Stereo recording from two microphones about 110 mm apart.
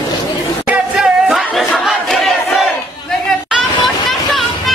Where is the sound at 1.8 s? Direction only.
Centre (ahead or behind).